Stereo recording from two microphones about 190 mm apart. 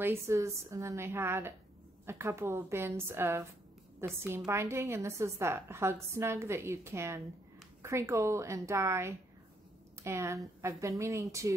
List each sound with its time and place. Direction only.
0.0 s a woman's voice: 15° right (ahead or behind)